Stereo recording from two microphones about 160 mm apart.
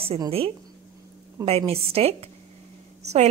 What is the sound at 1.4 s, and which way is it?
Speech, 40° right (ahead or behind).